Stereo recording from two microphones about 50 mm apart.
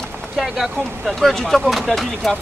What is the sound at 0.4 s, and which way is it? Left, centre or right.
Speech, centre.